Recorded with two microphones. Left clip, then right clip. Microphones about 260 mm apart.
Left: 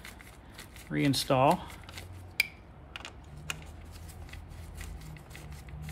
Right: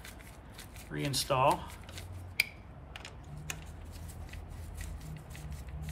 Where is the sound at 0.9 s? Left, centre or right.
Left.